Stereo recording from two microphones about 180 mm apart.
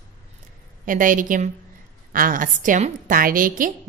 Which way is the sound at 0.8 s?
50° right (ahead or behind).